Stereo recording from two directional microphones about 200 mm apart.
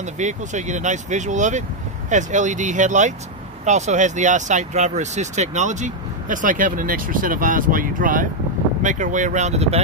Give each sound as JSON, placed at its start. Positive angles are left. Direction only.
{"t": 0.0, "sound": "speech", "side_deg": -35}